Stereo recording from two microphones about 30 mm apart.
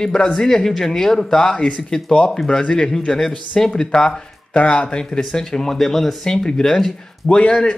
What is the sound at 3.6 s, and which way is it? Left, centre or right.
Speech, left.